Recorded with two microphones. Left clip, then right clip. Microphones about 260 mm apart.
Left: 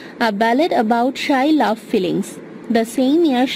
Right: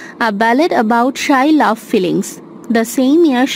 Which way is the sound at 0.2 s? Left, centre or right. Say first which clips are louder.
Right 3 dB; centre.